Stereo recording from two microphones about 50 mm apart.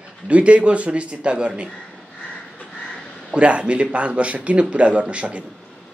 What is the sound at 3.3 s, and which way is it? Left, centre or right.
Speech, right.